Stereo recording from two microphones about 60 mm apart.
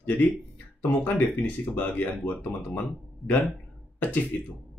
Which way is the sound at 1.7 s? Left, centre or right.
Left.